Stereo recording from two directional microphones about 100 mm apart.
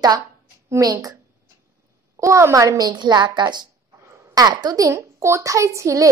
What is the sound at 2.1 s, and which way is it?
A woman's voice, 30° right (ahead or behind).